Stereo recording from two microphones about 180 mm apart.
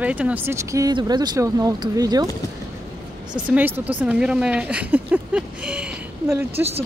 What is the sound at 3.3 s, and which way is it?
Speech, 10° right (ahead or behind).